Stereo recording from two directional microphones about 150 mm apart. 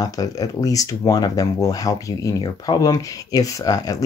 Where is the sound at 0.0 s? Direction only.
25° left (ahead or behind).